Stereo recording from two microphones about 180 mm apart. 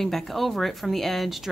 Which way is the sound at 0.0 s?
Centre (ahead or behind).